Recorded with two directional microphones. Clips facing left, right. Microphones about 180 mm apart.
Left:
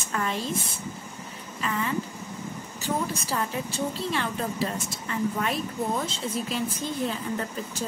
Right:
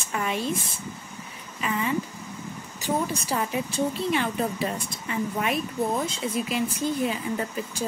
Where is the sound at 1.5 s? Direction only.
15° right (ahead or behind).